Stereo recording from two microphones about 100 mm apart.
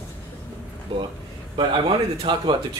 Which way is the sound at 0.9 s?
60° right (ahead or behind).